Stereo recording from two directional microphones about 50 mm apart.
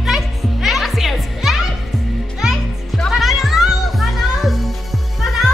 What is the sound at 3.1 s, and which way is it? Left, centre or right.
Music, centre.